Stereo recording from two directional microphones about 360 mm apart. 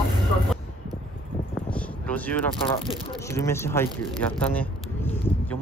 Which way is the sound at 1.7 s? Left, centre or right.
Centre.